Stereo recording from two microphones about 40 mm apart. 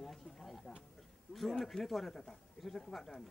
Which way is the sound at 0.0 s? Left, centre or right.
Centre.